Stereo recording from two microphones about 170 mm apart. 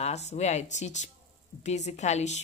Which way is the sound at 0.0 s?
40° left (ahead or behind).